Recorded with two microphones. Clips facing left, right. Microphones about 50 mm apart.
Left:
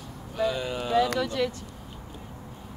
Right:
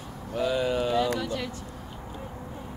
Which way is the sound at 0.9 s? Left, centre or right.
Left.